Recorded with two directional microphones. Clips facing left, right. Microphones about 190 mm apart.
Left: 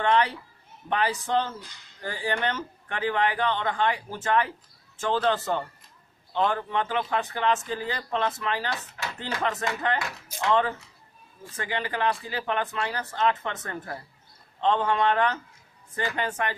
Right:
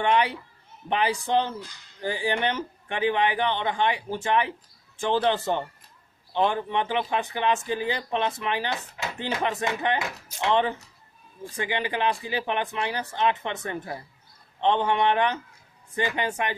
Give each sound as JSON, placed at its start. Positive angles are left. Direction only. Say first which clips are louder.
{"t": 0.0, "sound": "speech", "louder": "even", "side_deg": -15}